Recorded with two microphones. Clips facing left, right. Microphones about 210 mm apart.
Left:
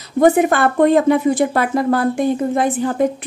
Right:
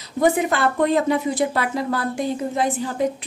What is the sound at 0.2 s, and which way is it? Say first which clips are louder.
A woman's voice: left 6 dB; 55° left (ahead or behind).